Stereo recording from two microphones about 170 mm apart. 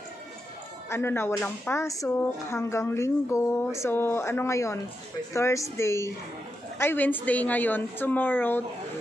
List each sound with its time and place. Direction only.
0.8 s speech: 15° left (ahead or behind)